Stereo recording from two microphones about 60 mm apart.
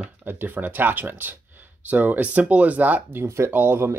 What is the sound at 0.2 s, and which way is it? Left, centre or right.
Speech, right.